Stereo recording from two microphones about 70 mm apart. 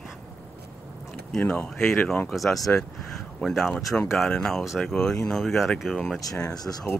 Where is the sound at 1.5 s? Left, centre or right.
Centre.